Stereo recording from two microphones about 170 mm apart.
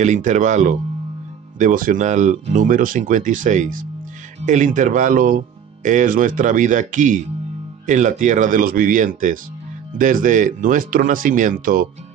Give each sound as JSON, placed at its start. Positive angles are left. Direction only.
{"t": 0.0, "sound": "speech", "side_deg": -45}